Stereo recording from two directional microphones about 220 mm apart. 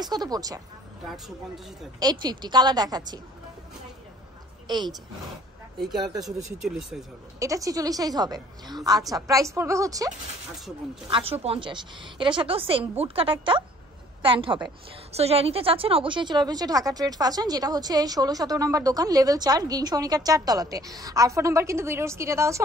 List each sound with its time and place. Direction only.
0.0 s a woman's voice: 20° right (ahead or behind)
2.0 s a woman's voice: 20° right (ahead or behind)
5.9 s a woman's voice: 20° right (ahead or behind)
6.6 s speech: centre (ahead or behind)
7.3 s a woman's voice: 15° right (ahead or behind)